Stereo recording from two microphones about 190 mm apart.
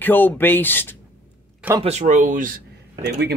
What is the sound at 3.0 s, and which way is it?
Speech, 60° right (ahead or behind).